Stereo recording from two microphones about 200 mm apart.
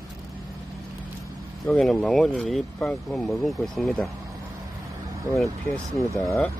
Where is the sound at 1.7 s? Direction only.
5° left (ahead or behind).